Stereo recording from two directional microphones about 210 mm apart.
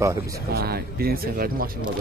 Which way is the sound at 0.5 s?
45° right (ahead or behind).